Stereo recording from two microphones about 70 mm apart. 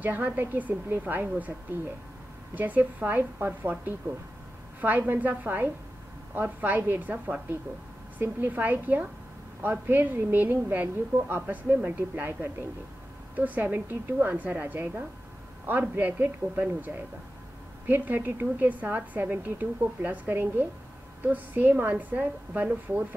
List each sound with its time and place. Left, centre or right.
0.0 s a woman's voice: right
2.5 s a woman's voice: right
4.8 s a woman's voice: right